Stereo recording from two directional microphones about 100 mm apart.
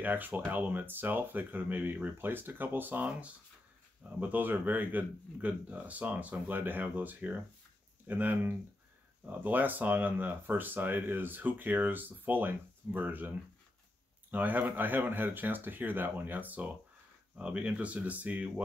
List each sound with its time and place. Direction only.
0.0 s a man's voice: 20° right (ahead or behind)